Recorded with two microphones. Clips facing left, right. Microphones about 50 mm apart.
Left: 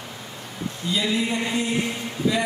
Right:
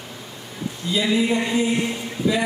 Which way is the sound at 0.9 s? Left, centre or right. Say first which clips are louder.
Right 4 dB; centre.